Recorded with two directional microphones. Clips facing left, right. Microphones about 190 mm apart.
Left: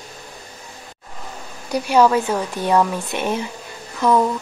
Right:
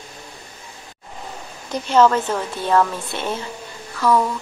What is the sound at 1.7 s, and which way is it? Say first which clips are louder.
A woman's voice: left 1 dB; 10° left (ahead or behind).